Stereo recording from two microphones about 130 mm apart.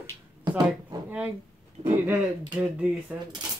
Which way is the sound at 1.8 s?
15° right (ahead or behind).